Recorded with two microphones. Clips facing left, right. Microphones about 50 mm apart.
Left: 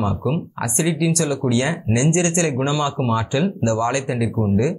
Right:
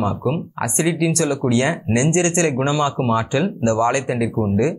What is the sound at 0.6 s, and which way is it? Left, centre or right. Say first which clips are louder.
Speech: right 2 dB; right.